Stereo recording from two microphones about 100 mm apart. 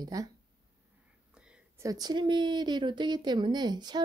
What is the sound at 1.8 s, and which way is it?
Speech, 40° right (ahead or behind).